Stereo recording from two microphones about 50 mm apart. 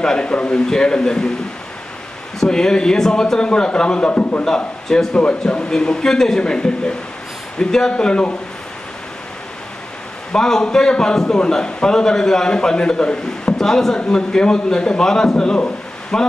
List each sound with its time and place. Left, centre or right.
0.0 s a man's voice: centre
2.4 s a man's voice: centre; by 4.5 s left
4.5 s a man's voice: centre
10.3 s a man's voice: centre